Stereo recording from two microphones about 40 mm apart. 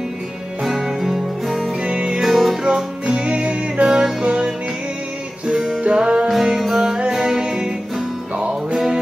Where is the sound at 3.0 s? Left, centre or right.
Right.